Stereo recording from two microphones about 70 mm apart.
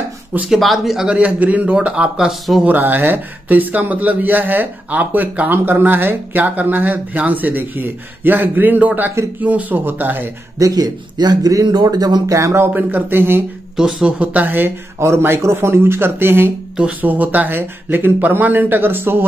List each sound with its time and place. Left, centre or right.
0.5 s speech: centre
1.0 s a man's voice: centre
2.6 s speech: right
10.6 s speech: right
12.6 s speech: right
13.7 s speech: centre; by 19.2 s right